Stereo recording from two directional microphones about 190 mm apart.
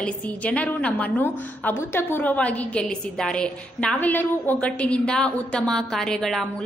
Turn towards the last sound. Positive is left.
turn(degrees=0)  # may be behind; listen again after turning